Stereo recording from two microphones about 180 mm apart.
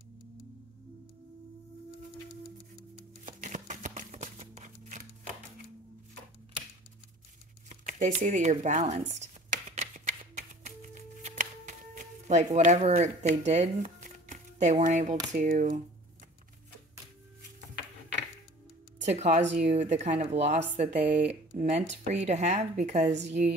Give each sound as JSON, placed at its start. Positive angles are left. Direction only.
{"t": 3.3, "sound": "a sound", "side_deg": -45}
{"t": 7.8, "sound": "speech", "side_deg": -45}
{"t": 9.2, "sound": "music", "side_deg": -40}
{"t": 12.5, "sound": "speech", "side_deg": -40}
{"t": 19.0, "sound": "speech", "side_deg": -40}